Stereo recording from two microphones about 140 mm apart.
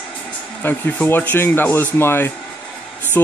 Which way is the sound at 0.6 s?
15° left (ahead or behind).